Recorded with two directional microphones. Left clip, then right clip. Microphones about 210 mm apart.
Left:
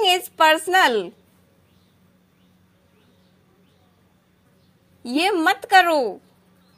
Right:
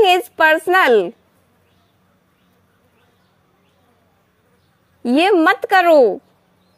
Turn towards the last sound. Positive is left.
turn(degrees=-30)  # may be behind; listen again after turning